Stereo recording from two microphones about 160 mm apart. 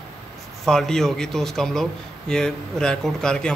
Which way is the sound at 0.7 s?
5° left (ahead or behind).